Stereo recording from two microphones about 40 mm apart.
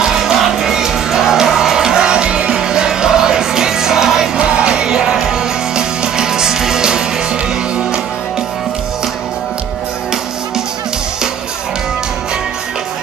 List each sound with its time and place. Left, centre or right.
0.2 s music: centre
4.4 s music: right